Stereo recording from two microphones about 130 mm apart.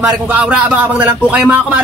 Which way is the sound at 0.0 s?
10° right (ahead or behind).